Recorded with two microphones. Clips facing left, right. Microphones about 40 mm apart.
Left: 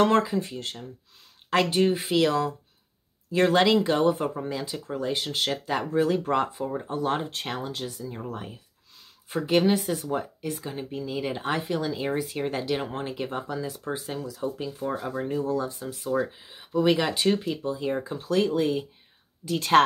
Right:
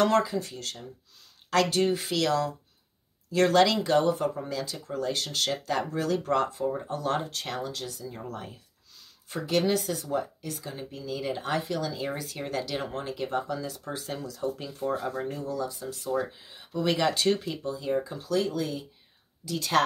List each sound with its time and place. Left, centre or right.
0.0 s speech: left
15.2 s speech: left
16.0 s speech: centre
17.6 s speech: left